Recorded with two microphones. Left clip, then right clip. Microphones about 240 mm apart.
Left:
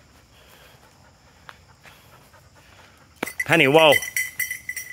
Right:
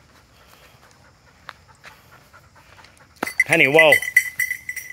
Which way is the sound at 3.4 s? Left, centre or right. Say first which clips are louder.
Right 1 dB; left.